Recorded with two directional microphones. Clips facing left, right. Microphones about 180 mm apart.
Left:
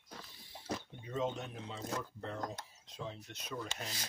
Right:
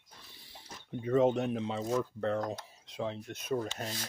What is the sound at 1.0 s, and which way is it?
Cutlery, 65° right (ahead or behind).